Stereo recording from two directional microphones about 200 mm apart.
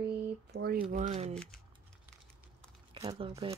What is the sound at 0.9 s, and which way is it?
Speech, 35° right (ahead or behind).